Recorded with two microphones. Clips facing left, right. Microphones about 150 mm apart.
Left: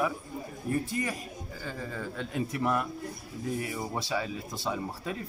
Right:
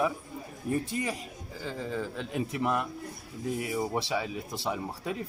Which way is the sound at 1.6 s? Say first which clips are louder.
Right 4 dB; 20° right (ahead or behind).